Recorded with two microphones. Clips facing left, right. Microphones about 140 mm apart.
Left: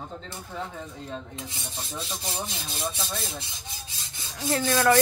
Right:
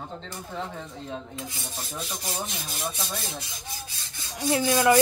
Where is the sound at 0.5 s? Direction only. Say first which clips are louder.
Right 1 dB; centre (ahead or behind).